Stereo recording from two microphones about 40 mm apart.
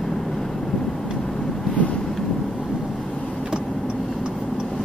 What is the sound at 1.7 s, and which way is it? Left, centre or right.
Vehicle, left.